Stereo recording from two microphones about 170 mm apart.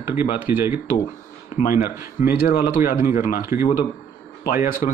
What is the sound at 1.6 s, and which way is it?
Speech, 40° left (ahead or behind).